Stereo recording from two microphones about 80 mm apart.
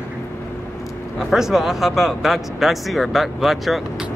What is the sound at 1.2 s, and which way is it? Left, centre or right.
Speech, centre.